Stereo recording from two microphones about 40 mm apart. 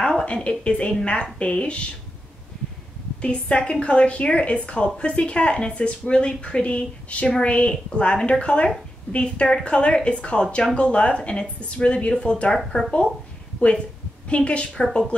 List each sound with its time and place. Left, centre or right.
0.0 s a woman's voice: left
3.2 s a woman's voice: left
13.6 s a woman's voice: left